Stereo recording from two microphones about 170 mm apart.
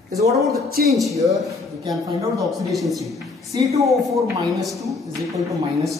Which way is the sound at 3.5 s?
20° right (ahead or behind).